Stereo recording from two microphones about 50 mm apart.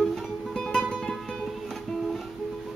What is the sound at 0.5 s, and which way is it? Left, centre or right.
Music, centre.